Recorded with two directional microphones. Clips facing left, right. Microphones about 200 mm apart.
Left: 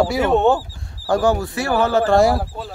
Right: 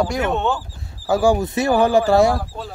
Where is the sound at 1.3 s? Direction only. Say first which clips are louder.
Right 3 dB; 20° right (ahead or behind).